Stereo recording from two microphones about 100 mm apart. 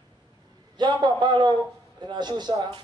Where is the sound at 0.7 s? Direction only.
50° right (ahead or behind).